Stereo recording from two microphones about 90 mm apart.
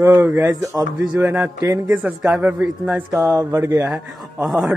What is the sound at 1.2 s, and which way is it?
Speech, 25° right (ahead or behind).